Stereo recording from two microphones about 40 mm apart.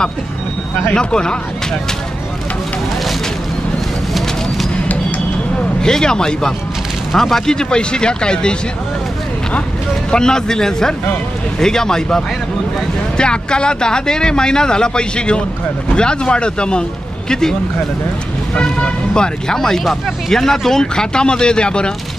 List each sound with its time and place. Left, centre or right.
0.9 s speech: left
5.8 s speech: centre
10.1 s speech: centre
13.2 s speech: left
17.3 s speech: centre
18.5 s speech: left